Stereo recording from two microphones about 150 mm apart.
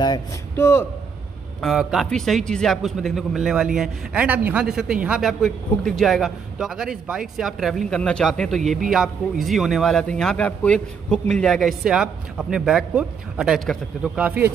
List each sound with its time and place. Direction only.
0.6 s a man's voice: 15° left (ahead or behind)
1.6 s speech: centre (ahead or behind)